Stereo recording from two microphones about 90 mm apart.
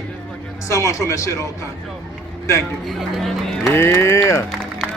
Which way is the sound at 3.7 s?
25° left (ahead or behind).